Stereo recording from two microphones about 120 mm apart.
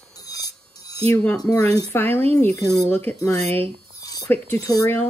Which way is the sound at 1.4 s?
30° left (ahead or behind).